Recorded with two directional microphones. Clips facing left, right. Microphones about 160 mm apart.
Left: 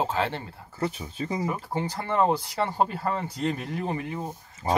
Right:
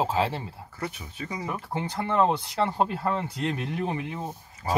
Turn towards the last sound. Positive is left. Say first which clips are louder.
# even
turn(degrees=0)  # may be behind; listen again after turning